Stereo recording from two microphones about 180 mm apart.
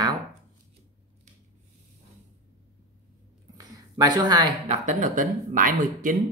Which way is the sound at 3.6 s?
20° right (ahead or behind).